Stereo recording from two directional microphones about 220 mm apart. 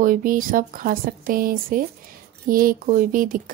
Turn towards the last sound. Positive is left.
turn(degrees=-40)  # may be behind; listen again after turning